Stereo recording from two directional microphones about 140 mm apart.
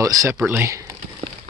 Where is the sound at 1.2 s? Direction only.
45° right (ahead or behind).